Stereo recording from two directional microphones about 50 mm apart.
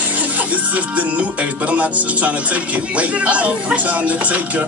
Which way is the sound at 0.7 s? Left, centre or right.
Right.